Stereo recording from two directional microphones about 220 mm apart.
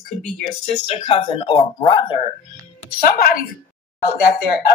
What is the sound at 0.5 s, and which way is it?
Speech, 30° left (ahead or behind).